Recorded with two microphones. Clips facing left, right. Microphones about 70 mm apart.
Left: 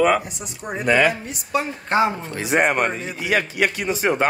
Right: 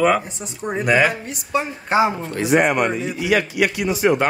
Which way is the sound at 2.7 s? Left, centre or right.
Left.